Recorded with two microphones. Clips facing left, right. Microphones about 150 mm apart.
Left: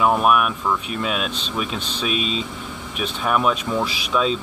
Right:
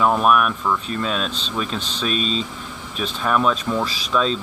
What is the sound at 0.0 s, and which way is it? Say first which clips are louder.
Speech: even; 5° left (ahead or behind).